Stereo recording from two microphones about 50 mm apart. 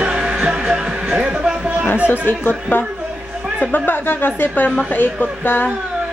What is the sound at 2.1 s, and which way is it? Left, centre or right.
Speech, left.